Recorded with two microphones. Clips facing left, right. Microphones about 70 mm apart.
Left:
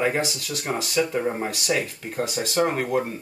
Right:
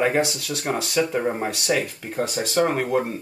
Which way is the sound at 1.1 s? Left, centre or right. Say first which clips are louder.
Right 1 dB; centre.